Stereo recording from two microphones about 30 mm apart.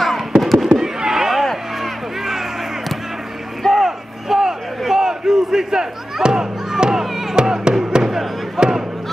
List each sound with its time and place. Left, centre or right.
0.3 s fireworks: centre
0.7 s a sound: centre
3.7 s battle cry: centre
7.3 s music: right
8.5 s basketball bounce: right